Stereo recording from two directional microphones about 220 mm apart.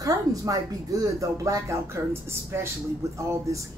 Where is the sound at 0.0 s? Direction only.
15° right (ahead or behind).